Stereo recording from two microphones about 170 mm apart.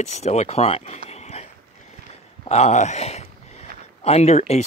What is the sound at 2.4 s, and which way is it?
Speech, 40° left (ahead or behind).